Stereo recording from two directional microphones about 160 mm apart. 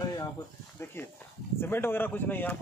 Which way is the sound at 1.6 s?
15° left (ahead or behind).